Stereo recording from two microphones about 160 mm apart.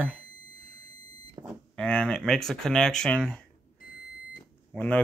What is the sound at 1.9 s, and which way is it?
Speech, 5° left (ahead or behind).